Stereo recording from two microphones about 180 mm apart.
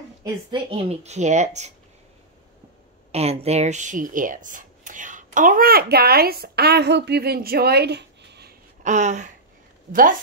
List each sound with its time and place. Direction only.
0.2 s speech: 30° right (ahead or behind)
3.1 s speech: 35° right (ahead or behind); by 8.5 s 65° right (ahead or behind)
8.8 s speech: 40° right (ahead or behind)